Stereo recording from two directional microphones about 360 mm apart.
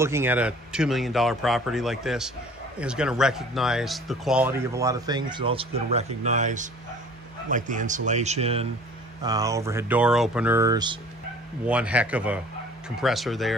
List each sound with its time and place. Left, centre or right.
0.0 s speech: centre